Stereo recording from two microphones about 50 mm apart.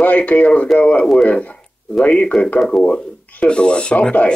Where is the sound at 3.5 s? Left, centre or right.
Centre.